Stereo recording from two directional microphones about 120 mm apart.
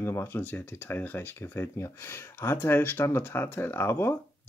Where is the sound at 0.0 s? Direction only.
20° left (ahead or behind).